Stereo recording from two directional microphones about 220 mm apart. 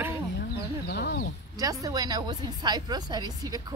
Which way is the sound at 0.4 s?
50° left (ahead or behind).